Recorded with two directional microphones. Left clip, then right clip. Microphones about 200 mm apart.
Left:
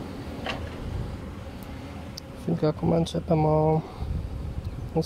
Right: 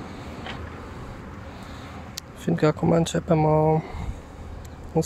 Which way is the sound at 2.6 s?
Centre (ahead or behind).